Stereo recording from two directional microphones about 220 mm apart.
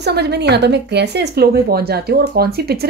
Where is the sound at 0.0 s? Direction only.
50° right (ahead or behind).